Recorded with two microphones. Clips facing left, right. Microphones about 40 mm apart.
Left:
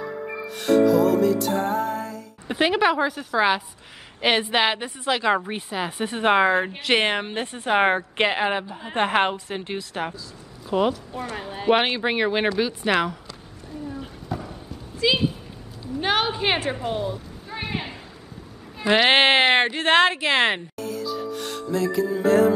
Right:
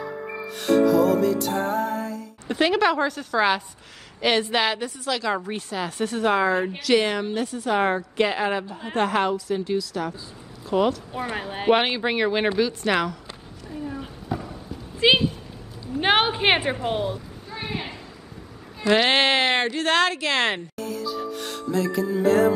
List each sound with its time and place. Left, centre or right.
0.5 s music: centre
2.4 s a woman's voice: centre
4.2 s speech: left
6.2 s a woman's voice: left
10.7 s a woman's voice: centre
11.1 s a woman's voice: centre
11.7 s a woman's voice: centre
14.0 s a sound: centre
15.0 s a woman's voice: right; by 17.2 s centre
17.5 s a sound: centre
18.8 s speech: centre
20.8 s music: centre